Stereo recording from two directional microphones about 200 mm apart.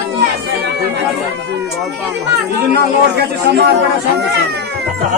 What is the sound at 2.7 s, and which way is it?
Speech, 55° right (ahead or behind).